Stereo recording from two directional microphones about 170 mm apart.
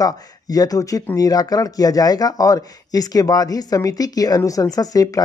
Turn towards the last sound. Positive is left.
turn(degrees=20)  # may be behind; listen again after turning